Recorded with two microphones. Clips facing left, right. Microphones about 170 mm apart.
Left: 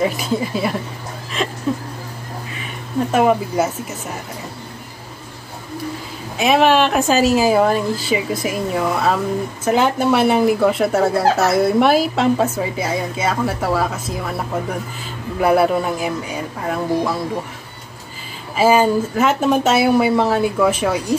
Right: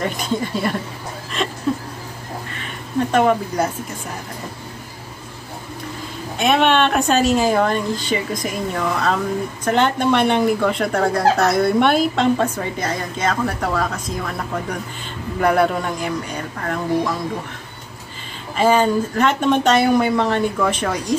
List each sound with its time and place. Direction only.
0.0 s speech: 5° left (ahead or behind)
1.3 s a sound: centre (ahead or behind)
2.6 s speech: 5° left (ahead or behind)
6.3 s speech: centre (ahead or behind)
18.6 s speech: 5° left (ahead or behind)